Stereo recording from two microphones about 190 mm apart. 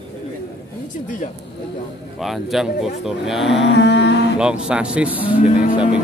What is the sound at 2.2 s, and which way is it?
Mantra, centre (ahead or behind).